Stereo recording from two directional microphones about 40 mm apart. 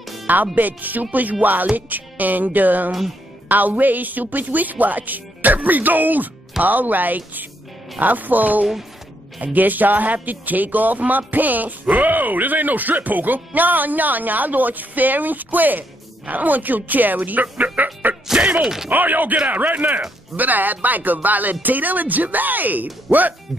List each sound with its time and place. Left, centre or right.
0.3 s speech: right
18.4 s speech: right
18.9 s speech: right